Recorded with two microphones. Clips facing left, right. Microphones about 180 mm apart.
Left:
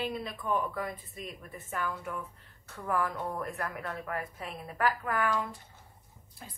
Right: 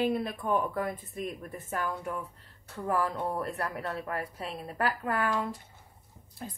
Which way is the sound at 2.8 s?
30° right (ahead or behind).